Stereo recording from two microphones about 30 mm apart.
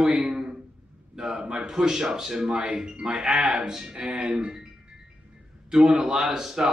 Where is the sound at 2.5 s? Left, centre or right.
Right.